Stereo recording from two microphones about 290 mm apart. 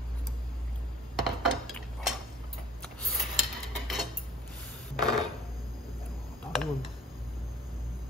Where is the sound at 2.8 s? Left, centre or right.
Centre.